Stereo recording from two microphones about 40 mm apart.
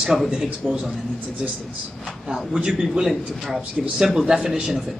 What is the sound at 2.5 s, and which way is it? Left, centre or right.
Speech, centre.